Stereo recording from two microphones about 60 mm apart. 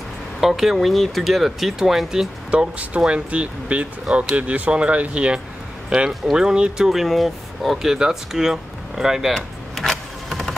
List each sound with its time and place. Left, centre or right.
0.4 s speech: centre
2.5 s speech: centre
5.9 s speech: centre
9.3 s vehicle: centre